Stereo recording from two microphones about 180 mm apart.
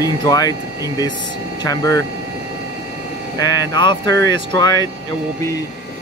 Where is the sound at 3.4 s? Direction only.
20° left (ahead or behind).